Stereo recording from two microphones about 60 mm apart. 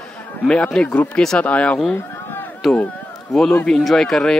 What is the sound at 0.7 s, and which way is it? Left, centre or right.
Speech, centre.